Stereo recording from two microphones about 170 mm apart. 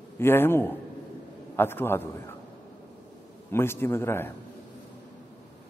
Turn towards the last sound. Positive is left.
turn(degrees=15)  # may be behind; listen again after turning